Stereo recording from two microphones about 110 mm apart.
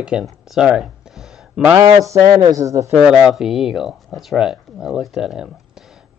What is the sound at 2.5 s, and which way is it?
Speech, 30° right (ahead or behind).